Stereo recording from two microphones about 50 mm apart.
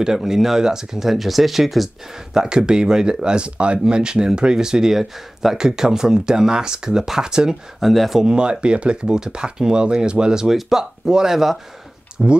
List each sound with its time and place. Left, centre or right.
0.0 s speech: centre
2.3 s speech: centre
7.8 s speech: centre
8.2 s speech: centre